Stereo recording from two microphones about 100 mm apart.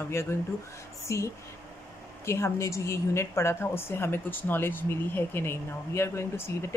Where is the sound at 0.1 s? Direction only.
25° left (ahead or behind).